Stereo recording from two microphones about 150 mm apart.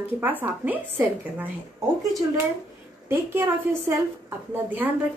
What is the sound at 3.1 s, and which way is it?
A woman's voice, 15° right (ahead or behind).